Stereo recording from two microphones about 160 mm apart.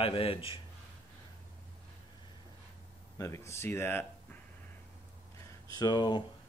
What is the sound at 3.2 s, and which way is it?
Speech, 15° left (ahead or behind).